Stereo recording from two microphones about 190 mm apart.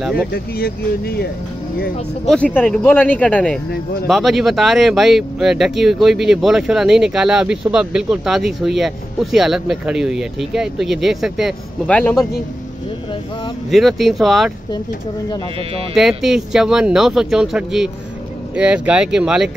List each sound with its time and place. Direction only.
0.0 s speech: centre (ahead or behind)
0.3 s speech: 55° left (ahead or behind)
2.2 s speech: 5° left (ahead or behind)
13.7 s speech: centre (ahead or behind)
15.9 s speech: centre (ahead or behind)